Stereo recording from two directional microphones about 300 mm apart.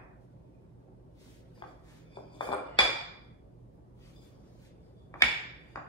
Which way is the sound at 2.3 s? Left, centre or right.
Centre.